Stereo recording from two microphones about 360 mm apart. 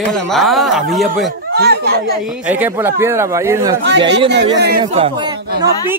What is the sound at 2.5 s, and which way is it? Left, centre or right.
A man's voice, centre.